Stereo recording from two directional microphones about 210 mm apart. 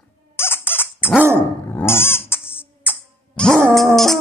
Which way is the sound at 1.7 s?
10° left (ahead or behind).